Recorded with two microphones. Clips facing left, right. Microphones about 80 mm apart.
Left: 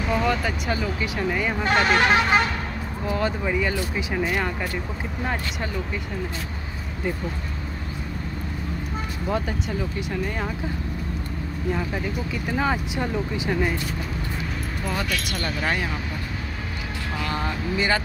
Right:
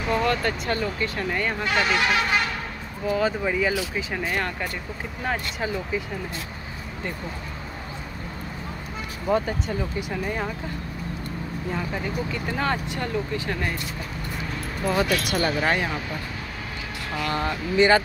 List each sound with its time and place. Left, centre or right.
0.1 s speech: centre
1.6 s speech: left
3.1 s speech: centre
9.3 s speech: centre
11.7 s speech: centre
15.0 s speech: centre
17.2 s speech: centre